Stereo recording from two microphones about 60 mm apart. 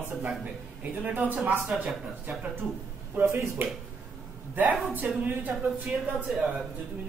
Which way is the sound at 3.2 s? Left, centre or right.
Right.